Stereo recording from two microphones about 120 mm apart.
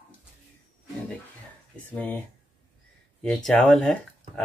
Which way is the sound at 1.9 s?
15° left (ahead or behind).